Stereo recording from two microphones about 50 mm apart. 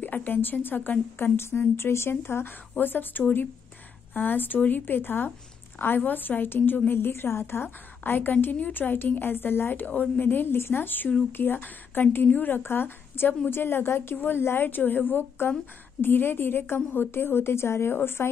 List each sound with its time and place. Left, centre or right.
0.0 s a woman's voice: left
9.8 s a woman's voice: left